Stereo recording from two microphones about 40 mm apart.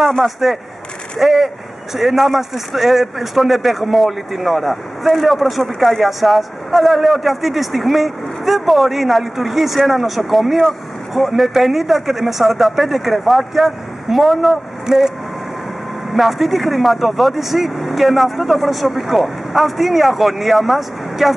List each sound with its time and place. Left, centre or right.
0.2 s speech: centre
14.9 s speech: centre
16.1 s speech: centre